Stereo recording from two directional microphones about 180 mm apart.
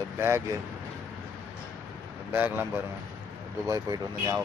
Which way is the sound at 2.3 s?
10° right (ahead or behind).